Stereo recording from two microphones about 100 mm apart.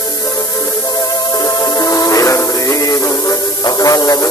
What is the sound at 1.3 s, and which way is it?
Music, 40° left (ahead or behind).